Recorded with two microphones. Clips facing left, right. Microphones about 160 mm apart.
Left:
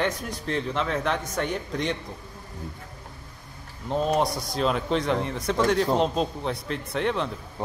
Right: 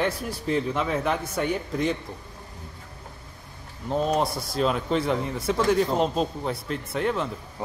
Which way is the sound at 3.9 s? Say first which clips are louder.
Even; centre (ahead or behind).